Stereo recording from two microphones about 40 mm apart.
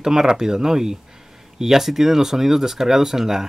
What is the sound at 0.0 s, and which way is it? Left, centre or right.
Speech, centre.